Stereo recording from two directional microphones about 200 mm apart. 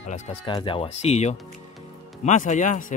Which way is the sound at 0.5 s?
25° left (ahead or behind).